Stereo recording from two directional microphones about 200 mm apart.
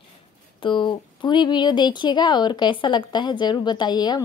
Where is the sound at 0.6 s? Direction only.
25° left (ahead or behind).